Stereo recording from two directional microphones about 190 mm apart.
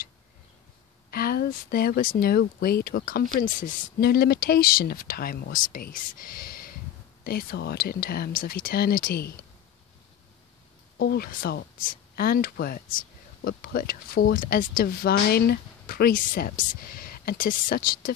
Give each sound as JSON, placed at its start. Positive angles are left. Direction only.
{"t": 1.1, "sound": "speech", "side_deg": 55}
{"t": 11.0, "sound": "speech", "side_deg": 55}